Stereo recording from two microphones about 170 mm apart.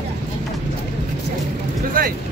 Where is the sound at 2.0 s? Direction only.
55° right (ahead or behind).